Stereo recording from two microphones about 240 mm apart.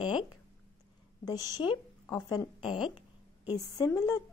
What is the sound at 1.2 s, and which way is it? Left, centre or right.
Speech, centre.